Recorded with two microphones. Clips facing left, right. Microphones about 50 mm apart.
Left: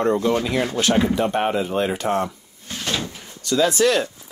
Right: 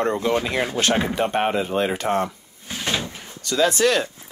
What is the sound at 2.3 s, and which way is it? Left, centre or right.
Drawer open or close, centre.